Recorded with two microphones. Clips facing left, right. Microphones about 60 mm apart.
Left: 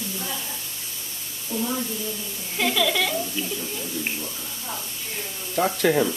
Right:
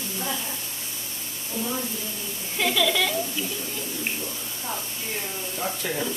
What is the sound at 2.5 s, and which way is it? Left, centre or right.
Speech, centre.